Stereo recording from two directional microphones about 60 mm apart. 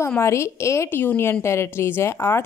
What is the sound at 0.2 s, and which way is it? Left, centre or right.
Speech, left.